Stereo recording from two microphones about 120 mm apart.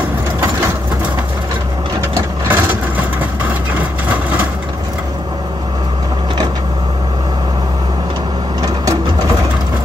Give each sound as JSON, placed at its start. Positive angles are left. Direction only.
{"t": 2.1, "sound": "vehicle", "side_deg": -20}